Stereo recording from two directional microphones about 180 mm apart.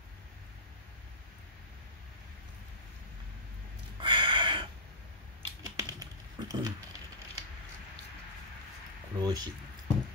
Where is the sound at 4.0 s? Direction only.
25° right (ahead or behind).